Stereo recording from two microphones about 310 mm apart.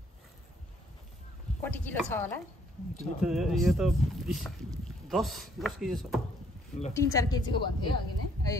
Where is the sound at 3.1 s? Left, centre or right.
Centre.